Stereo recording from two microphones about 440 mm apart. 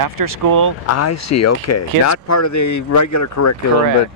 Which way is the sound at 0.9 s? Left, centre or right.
Left.